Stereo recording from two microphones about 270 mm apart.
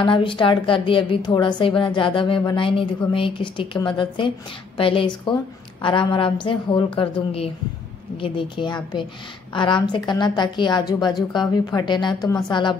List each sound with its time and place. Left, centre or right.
0.0 s a woman's voice: centre